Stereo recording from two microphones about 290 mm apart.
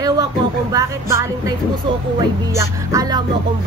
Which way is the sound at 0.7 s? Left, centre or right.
Centre.